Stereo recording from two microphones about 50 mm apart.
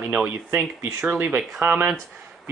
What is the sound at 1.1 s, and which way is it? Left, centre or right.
Speech, right.